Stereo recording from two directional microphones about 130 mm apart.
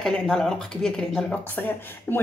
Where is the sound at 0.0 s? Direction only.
5° left (ahead or behind).